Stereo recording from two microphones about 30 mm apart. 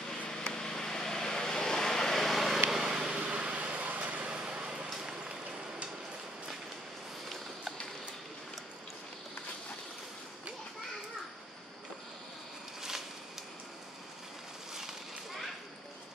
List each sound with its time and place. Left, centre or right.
0.5 s vehicle: left
2.2 s vehicle: centre
2.7 s vehicle: centre
3.2 s vehicle: right
4.3 s vehicle: right